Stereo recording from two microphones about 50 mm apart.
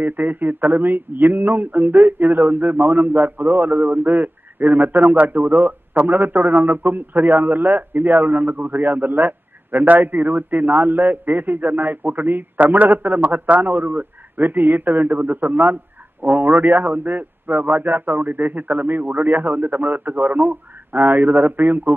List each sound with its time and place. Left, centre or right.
0.0 s a man's voice: right